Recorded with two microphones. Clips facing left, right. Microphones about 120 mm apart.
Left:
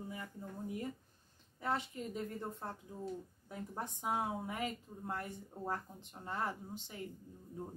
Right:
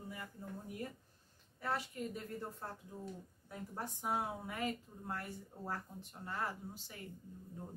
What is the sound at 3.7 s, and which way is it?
Speech, 20° left (ahead or behind).